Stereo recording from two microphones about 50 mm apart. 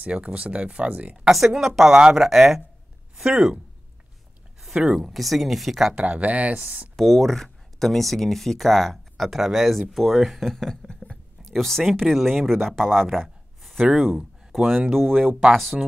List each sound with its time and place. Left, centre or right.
0.0 s speech: right
1.8 s speech: centre
4.6 s speech: centre
5.9 s speech: right
7.0 s speech: centre